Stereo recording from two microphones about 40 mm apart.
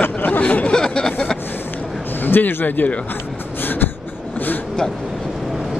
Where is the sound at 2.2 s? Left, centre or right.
Left.